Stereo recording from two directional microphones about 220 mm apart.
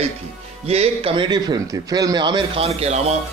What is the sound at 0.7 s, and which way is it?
Speech, 25° right (ahead or behind).